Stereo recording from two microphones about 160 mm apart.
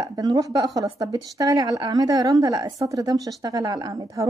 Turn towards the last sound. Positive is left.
turn(degrees=-20)  # may be behind; listen again after turning